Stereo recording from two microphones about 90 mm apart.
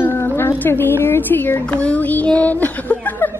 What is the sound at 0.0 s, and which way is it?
Speech, 25° left (ahead or behind).